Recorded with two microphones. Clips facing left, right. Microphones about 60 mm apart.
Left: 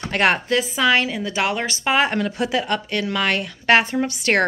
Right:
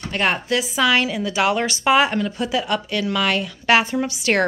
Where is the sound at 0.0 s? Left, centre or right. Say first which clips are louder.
Left 3 dB; left.